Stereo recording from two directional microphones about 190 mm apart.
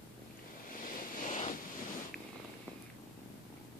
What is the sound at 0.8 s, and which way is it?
Vehicle, 45° left (ahead or behind).